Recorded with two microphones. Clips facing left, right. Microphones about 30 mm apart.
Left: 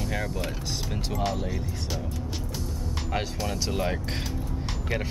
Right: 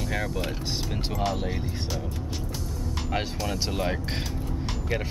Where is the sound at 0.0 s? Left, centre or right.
Centre.